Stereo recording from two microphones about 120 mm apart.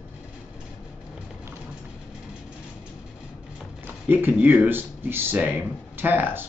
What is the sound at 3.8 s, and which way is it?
Speech, 15° right (ahead or behind).